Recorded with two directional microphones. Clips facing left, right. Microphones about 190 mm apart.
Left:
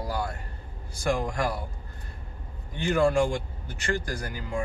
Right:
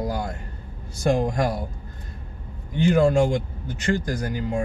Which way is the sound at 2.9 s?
20° right (ahead or behind).